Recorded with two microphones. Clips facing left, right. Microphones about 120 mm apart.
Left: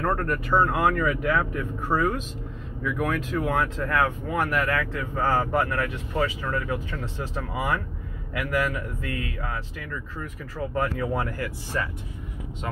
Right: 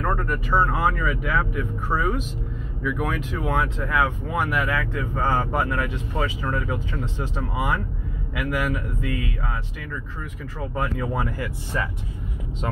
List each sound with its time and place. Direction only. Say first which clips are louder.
0.0 s speech: even; centre (ahead or behind)
1.9 s speech: left 2 dB; 10° left (ahead or behind)
2.8 s speech: even; 10° right (ahead or behind)
11.0 s speech: even; 10° right (ahead or behind)